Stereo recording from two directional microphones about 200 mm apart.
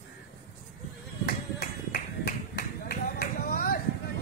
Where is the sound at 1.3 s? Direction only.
50° left (ahead or behind).